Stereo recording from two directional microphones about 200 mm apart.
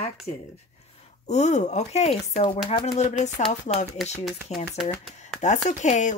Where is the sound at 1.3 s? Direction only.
35° left (ahead or behind).